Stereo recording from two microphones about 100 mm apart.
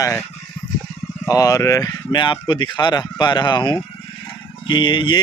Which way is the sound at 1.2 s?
35° left (ahead or behind).